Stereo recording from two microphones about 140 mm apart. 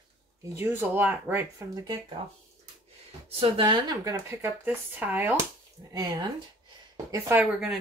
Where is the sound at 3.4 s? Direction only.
35° right (ahead or behind); by 5.4 s 15° right (ahead or behind).